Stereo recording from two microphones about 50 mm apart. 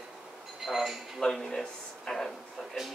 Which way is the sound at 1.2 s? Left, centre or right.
Centre.